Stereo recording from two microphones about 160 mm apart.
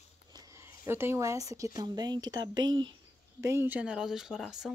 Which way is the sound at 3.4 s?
15° right (ahead or behind).